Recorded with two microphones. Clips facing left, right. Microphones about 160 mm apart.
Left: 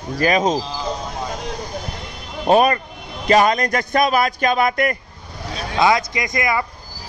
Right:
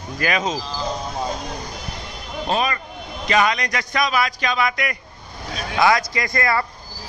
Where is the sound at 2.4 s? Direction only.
50° left (ahead or behind).